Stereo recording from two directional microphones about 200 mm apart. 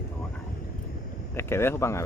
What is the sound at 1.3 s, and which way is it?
Speech, 10° left (ahead or behind).